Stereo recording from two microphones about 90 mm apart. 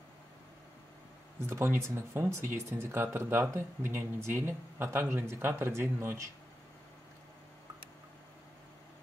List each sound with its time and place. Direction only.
1.4 s speech: 25° right (ahead or behind)